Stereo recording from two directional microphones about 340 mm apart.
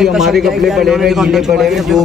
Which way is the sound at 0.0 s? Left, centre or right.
Centre.